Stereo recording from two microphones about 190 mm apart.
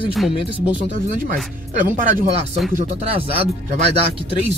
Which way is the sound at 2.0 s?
45° right (ahead or behind).